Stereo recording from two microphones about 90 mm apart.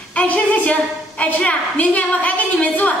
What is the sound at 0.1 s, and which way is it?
A woman's voice, 15° left (ahead or behind).